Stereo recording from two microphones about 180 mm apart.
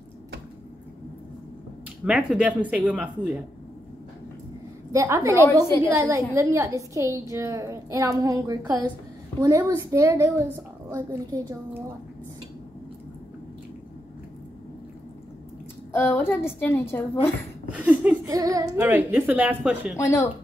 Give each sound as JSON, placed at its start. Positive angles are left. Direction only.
{"t": 2.0, "sound": "a woman's voice", "side_deg": -5}
{"t": 4.9, "sound": "a woman's voice", "side_deg": -15}
{"t": 15.9, "sound": "a woman's voice", "side_deg": 10}
{"t": 17.7, "sound": "a woman's voice", "side_deg": -10}
{"t": 20.0, "sound": "a woman's voice", "side_deg": 15}